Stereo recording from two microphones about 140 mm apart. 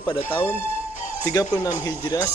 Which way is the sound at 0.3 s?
15° left (ahead or behind).